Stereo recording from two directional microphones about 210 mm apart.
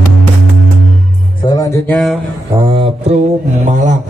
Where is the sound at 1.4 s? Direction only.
20° left (ahead or behind).